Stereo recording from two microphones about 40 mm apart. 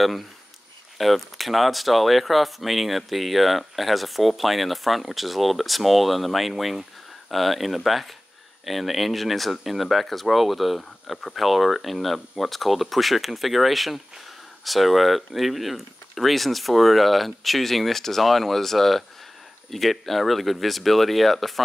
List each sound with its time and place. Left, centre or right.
0.0 s speech: centre